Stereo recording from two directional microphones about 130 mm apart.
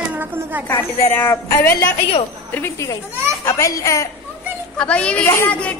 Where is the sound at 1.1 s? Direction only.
15° left (ahead or behind).